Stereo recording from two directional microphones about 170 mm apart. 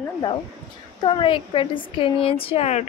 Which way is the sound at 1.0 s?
30° left (ahead or behind).